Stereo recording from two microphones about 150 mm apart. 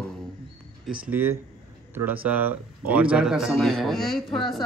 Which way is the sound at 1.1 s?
15° right (ahead or behind).